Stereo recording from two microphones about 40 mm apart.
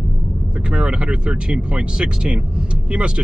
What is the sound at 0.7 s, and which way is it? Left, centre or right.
Speech, right.